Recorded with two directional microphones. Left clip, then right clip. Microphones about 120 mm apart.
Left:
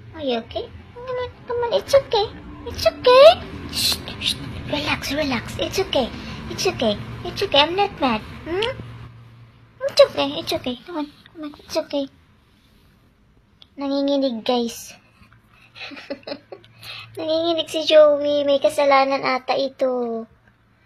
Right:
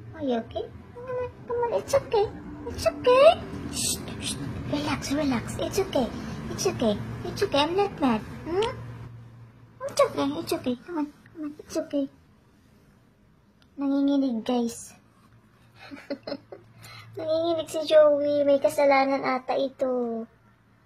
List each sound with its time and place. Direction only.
0.1 s a child's voice: 15° left (ahead or behind)
9.8 s a woman's voice: 5° left (ahead or behind)
13.7 s a sound: 30° left (ahead or behind)
15.9 s a child's voice: 25° left (ahead or behind)